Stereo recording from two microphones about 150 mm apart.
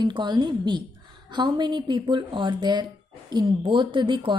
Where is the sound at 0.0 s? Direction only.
30° right (ahead or behind).